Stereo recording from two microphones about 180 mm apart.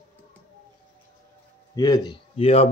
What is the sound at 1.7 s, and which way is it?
Speech, 20° left (ahead or behind).